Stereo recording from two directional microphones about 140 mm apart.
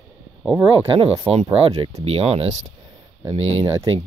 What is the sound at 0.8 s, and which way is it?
Speech, 45° right (ahead or behind).